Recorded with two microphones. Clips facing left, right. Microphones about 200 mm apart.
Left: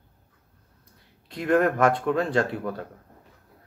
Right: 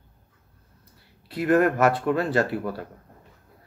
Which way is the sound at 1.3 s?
5° right (ahead or behind).